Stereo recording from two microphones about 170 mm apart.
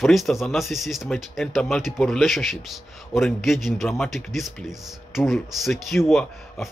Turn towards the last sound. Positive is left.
turn(degrees=0)  # may be behind; listen again after turning